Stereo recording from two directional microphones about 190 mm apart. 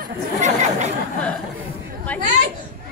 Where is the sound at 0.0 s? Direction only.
40° right (ahead or behind).